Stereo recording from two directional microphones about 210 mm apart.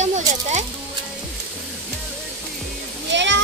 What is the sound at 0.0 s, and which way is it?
Music, 35° right (ahead or behind).